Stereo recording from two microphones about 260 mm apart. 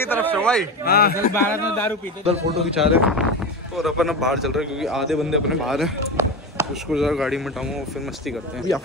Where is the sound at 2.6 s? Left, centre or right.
Centre.